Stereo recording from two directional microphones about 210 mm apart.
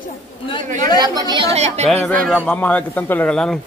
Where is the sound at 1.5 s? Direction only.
30° right (ahead or behind).